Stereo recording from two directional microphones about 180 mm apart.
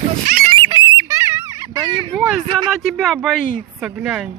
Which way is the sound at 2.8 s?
Centre (ahead or behind).